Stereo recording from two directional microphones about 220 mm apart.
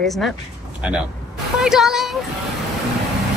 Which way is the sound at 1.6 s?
Centre (ahead or behind).